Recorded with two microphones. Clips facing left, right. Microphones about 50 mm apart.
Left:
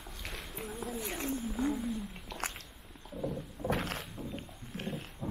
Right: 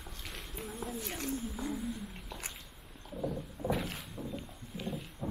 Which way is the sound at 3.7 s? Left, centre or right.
Left.